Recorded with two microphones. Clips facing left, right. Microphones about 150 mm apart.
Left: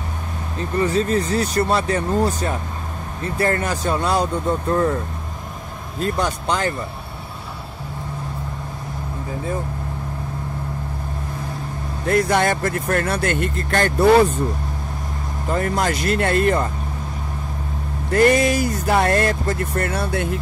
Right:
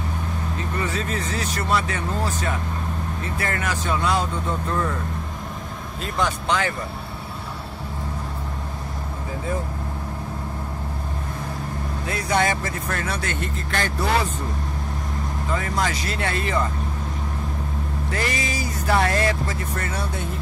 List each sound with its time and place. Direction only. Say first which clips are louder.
0.7 s speech: left 10 dB; 35° left (ahead or behind)
3.4 s speech: left 5 dB; 35° left (ahead or behind)
5.9 s speech: left 3 dB; 40° left (ahead or behind)
12.1 s speech: left 5 dB; 55° left (ahead or behind)
15.5 s speech: left 5 dB; 50° left (ahead or behind)
18.1 s speech: left 13 dB; 55° left (ahead or behind)